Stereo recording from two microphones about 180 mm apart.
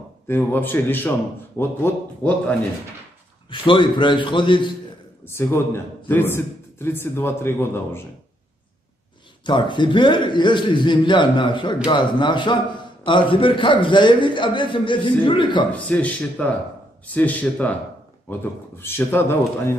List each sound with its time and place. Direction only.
0.3 s a man's voice: 10° left (ahead or behind)
3.4 s a man's voice: 25° left (ahead or behind)
5.2 s a man's voice: 15° left (ahead or behind)
9.4 s a man's voice: 25° left (ahead or behind)
15.7 s a man's voice: 10° left (ahead or behind)